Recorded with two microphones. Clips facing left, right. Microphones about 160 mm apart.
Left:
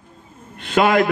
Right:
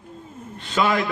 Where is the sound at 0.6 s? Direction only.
60° left (ahead or behind).